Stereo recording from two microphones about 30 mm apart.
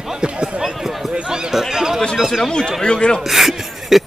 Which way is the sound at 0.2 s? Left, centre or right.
Right.